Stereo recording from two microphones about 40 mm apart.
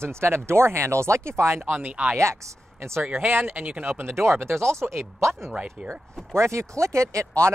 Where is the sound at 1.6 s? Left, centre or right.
Right.